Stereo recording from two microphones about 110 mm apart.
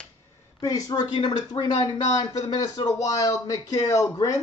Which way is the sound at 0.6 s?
30° left (ahead or behind).